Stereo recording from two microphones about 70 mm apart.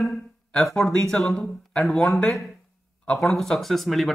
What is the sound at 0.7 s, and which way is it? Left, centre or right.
A man's voice, centre.